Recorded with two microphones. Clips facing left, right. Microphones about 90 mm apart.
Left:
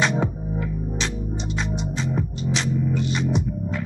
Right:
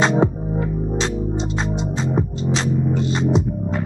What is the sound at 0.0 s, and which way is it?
Music, 30° right (ahead or behind).